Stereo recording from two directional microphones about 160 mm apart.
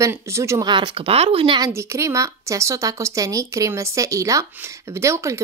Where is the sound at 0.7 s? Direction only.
30° right (ahead or behind).